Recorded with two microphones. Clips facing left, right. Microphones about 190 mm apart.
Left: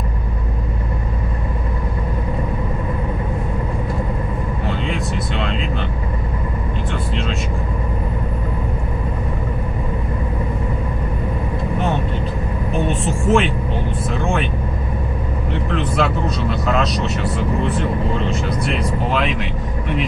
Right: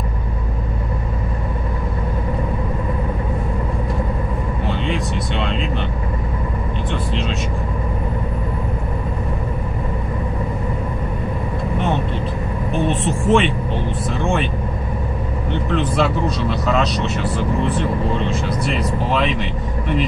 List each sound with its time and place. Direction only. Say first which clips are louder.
4.6 s vehicle: right 1 dB; centre (ahead or behind)
6.9 s vehicle: right 1 dB; centre (ahead or behind)
12.7 s vehicle: right 1 dB; centre (ahead or behind)
15.5 s vehicle: right 2 dB; centre (ahead or behind)